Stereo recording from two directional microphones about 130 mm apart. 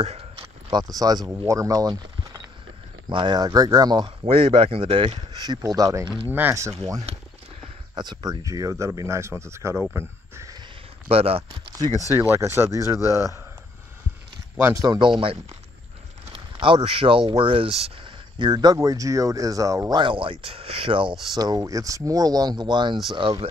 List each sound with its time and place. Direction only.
0.0 s a sound: 50° right (ahead or behind)
0.7 s speech: 30° right (ahead or behind)
5.8 s speech: 25° right (ahead or behind)
7.9 s speech: 35° right (ahead or behind)
11.1 s speech: 50° right (ahead or behind)
12.2 s speech: 20° right (ahead or behind)
14.6 s speech: 25° right (ahead or behind)
15.0 s speech: 40° right (ahead or behind)
20.0 s speech: 40° right (ahead or behind)
21.4 s speech: 30° right (ahead or behind)